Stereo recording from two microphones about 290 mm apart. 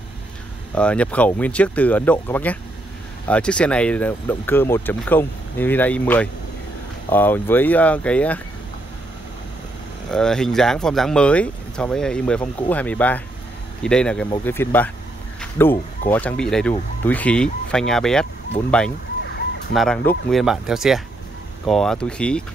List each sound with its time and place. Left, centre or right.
0.7 s speech: centre
10.1 s speech: centre